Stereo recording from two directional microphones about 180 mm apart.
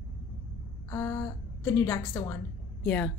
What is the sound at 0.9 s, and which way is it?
A woman's voice, 15° left (ahead or behind).